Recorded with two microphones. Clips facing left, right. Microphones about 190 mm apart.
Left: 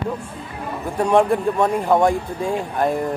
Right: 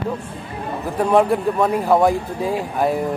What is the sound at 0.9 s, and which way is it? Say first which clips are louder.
Speech: even; 5° right (ahead or behind).